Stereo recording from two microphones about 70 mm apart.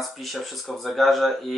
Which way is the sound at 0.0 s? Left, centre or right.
Centre.